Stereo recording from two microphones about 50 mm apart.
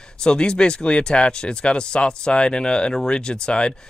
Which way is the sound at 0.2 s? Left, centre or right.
Centre.